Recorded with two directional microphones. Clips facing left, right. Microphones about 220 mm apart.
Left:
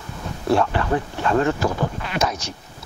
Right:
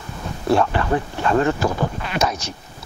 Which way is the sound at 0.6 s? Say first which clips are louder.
Right 1 dB; 20° right (ahead or behind).